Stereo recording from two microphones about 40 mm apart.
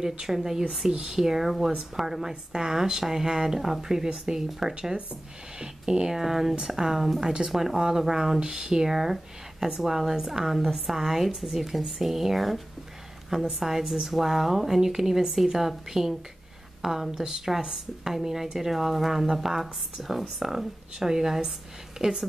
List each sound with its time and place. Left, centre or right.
0.1 s a woman's voice: centre
4.7 s a woman's voice: right